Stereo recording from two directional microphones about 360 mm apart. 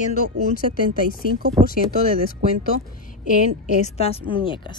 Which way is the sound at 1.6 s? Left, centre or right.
Centre.